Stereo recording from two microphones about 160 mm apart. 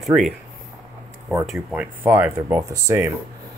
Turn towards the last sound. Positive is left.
turn(degrees=-20)  # may be behind; listen again after turning